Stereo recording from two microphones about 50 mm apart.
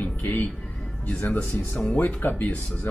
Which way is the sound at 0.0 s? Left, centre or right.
Left.